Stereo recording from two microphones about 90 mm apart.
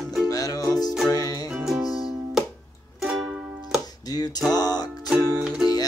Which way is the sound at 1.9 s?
5° right (ahead or behind).